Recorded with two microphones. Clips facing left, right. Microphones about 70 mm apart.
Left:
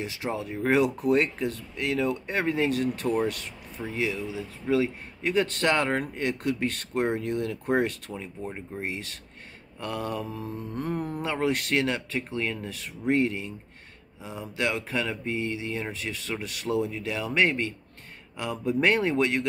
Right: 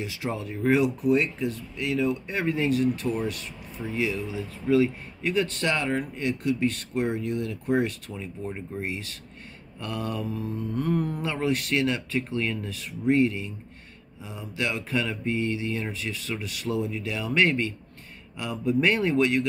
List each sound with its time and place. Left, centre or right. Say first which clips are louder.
0.0 s speech: even; left
3.8 s speech: right 1 dB; centre
4.6 s speech: right 3 dB; left
9.8 s speech: even; left
12.2 s mantra: right 2 dB; left
12.6 s speech: right 3 dB; left
14.4 s mantra: left 1 dB; left
15.9 s speech: right 1 dB; left
17.3 s mantra: right 2 dB; left
18.4 s speech: right 1 dB; left